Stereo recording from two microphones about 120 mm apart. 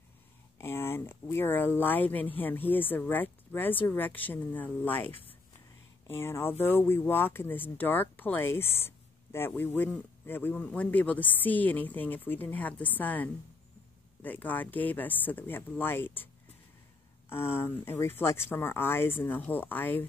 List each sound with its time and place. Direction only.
0.6 s speech: 20° left (ahead or behind)
17.3 s speech: 20° left (ahead or behind)